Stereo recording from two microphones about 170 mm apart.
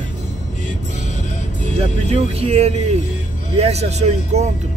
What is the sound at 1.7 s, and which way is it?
Speech, 35° right (ahead or behind).